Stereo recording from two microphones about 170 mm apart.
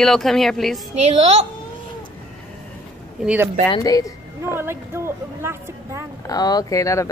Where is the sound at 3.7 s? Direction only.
20° left (ahead or behind).